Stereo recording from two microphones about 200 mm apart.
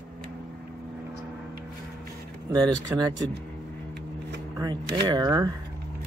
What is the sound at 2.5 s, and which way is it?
Speech, 20° right (ahead or behind).